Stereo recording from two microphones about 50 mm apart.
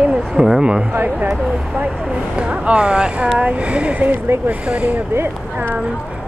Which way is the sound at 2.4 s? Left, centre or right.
Right.